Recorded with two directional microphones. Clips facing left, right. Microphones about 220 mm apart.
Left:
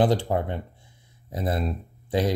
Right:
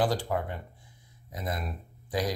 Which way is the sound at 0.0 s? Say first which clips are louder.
Left 6 dB; 25° left (ahead or behind).